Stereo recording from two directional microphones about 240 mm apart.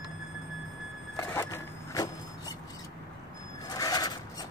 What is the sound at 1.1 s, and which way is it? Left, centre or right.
Vehicle, centre.